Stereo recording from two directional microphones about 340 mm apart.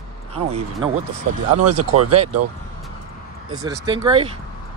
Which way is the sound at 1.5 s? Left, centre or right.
Right.